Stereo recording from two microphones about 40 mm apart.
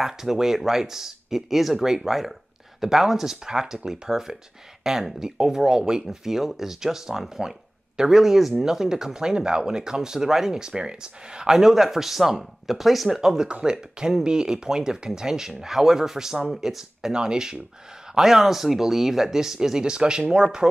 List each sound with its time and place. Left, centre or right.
0.0 s speech: centre
13.5 s speech: right
13.7 s speech: centre